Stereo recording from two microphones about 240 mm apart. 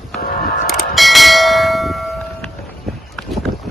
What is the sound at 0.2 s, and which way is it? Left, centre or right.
Music, left.